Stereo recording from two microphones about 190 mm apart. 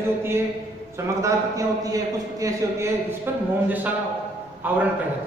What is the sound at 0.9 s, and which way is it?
A man's voice, 15° right (ahead or behind).